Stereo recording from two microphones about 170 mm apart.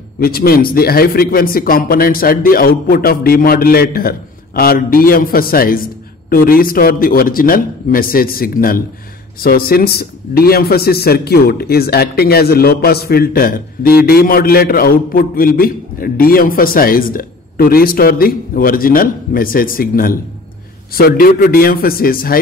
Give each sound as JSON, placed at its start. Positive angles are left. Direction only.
{"t": 0.2, "sound": "a man's voice", "side_deg": 65}